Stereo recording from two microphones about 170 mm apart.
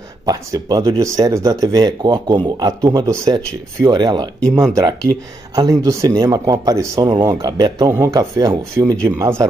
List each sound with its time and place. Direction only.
0.2 s speech: 25° right (ahead or behind)